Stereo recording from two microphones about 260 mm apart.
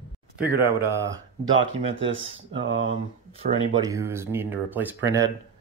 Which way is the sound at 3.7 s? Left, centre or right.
Centre.